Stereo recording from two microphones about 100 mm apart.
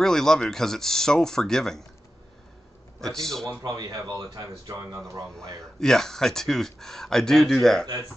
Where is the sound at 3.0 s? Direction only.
5° left (ahead or behind).